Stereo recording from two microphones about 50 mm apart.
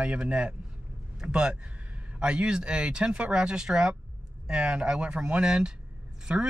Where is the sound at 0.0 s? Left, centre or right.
Right.